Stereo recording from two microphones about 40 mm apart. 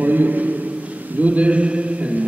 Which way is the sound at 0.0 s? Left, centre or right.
Right.